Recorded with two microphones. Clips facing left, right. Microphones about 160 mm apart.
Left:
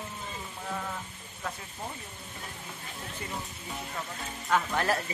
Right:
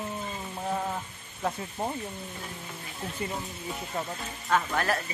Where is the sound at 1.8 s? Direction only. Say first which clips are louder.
Right 8 dB; 50° right (ahead or behind).